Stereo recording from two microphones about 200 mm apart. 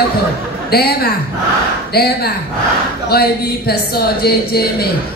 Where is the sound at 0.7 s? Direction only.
50° left (ahead or behind).